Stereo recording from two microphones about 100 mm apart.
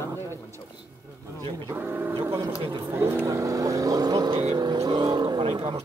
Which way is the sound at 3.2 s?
35° right (ahead or behind).